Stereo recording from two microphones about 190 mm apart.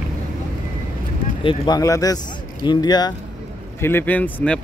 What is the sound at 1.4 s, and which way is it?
Speech, 25° left (ahead or behind).